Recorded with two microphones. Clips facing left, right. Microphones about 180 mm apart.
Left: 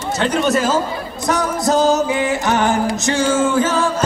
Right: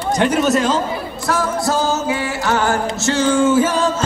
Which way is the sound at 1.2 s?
20° left (ahead or behind).